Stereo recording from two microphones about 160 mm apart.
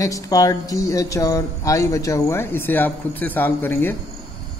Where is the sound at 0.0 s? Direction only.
20° left (ahead or behind).